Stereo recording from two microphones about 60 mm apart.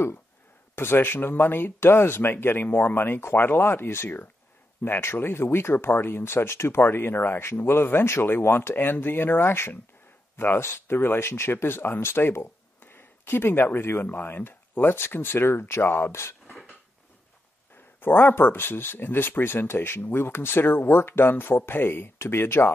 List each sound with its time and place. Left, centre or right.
0.7 s speech: left
6.8 s speech: left
18.0 s speech: left